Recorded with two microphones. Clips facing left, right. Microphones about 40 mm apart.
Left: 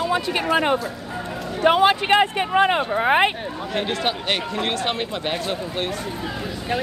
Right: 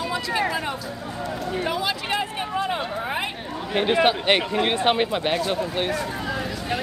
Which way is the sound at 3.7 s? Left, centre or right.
Centre.